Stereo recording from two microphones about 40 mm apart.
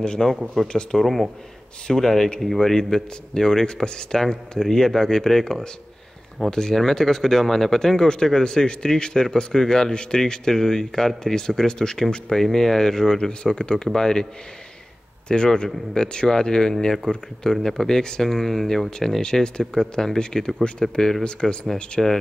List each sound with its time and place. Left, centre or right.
0.0 s speech: left
13.3 s speech: left
15.2 s speech: left
17.6 s speech: centre
18.9 s speech: centre
22.0 s speech: centre